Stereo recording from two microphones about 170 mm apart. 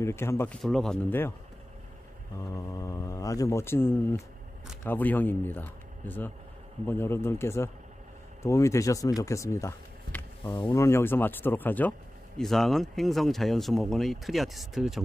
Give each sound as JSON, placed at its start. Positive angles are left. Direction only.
{"t": 0.0, "sound": "speech", "side_deg": 15}
{"t": 0.6, "sound": "speech", "side_deg": 0}
{"t": 2.5, "sound": "speech", "side_deg": 20}